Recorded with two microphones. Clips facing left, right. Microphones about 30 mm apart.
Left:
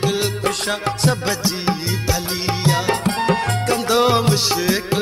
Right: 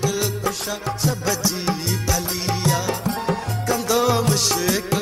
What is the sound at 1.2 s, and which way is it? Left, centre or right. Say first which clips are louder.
Music: left 2 dB; left.